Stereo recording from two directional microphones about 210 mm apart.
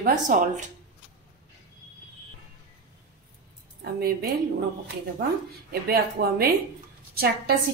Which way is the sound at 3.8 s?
45° right (ahead or behind).